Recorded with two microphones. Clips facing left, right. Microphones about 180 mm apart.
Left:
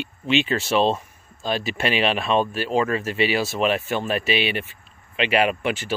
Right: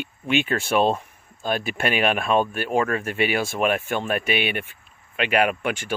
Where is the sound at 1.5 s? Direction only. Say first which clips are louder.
Even; 55° right (ahead or behind).